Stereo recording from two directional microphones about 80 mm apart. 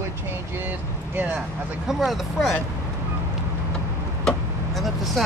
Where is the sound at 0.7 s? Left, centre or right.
Right.